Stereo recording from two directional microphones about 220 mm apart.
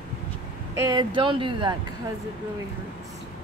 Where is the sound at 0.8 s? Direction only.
20° right (ahead or behind).